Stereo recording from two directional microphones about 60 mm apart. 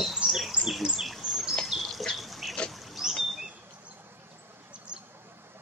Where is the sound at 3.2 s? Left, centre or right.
Centre.